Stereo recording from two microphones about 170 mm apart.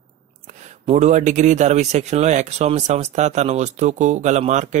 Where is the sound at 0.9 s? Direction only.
45° right (ahead or behind).